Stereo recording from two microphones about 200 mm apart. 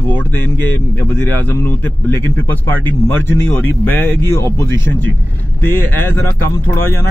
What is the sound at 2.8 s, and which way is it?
Speech, 10° left (ahead or behind).